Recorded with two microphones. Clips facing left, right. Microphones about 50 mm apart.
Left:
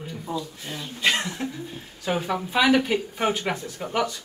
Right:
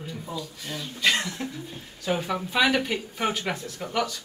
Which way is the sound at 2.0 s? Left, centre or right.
Centre.